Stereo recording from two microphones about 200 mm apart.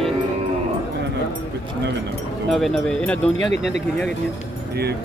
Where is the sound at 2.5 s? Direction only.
Centre (ahead or behind).